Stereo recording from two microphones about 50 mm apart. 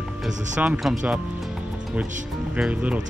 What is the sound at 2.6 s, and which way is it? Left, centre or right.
Speech, right.